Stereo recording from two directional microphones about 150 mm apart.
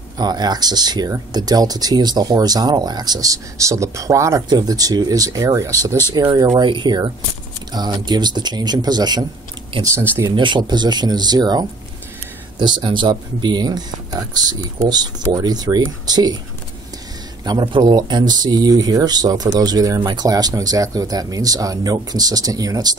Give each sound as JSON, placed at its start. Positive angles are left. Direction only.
{"t": 0.2, "sound": "speech", "side_deg": -30}
{"t": 10.3, "sound": "speech", "side_deg": -30}
{"t": 17.5, "sound": "speech", "side_deg": -30}